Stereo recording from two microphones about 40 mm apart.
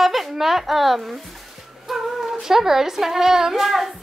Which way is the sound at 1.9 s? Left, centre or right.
Centre.